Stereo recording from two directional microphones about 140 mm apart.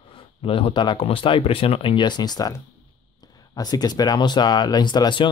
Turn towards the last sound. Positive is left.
turn(degrees=35)  # may be behind; listen again after turning